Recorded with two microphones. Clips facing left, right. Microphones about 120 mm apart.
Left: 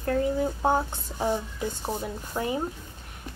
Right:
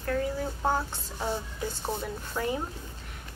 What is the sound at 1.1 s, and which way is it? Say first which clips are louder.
Speech: left 5 dB; 50° left (ahead or behind).